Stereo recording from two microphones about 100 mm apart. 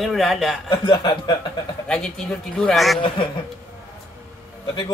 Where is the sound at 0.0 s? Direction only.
Centre (ahead or behind).